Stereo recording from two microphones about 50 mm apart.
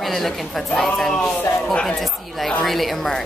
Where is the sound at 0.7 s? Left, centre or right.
Centre.